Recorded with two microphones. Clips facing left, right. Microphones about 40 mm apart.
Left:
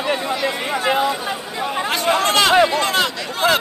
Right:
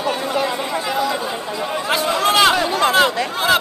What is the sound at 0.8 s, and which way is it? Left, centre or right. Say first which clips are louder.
Chatter: left 4 dB; left.